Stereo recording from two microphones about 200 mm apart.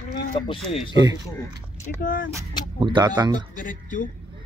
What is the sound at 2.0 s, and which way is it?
Speech, 45° left (ahead or behind).